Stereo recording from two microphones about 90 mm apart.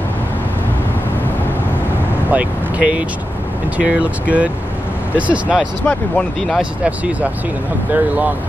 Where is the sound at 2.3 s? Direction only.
15° right (ahead or behind).